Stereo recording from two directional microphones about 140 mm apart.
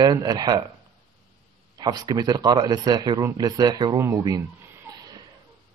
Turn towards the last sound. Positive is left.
turn(degrees=-25)  # may be behind; listen again after turning